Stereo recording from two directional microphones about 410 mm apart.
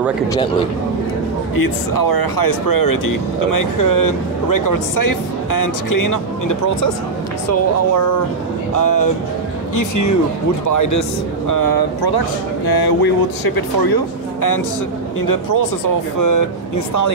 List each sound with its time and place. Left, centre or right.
1.5 s speech: left